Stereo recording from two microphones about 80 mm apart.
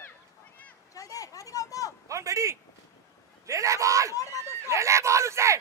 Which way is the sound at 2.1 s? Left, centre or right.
Right.